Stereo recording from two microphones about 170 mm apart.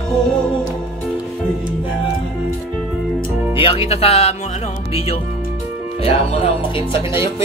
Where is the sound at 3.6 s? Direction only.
35° left (ahead or behind).